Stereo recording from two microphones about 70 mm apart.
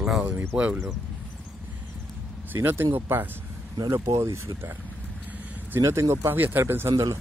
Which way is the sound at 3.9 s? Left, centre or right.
Right.